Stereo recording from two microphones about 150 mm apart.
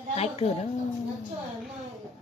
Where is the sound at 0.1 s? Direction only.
45° left (ahead or behind).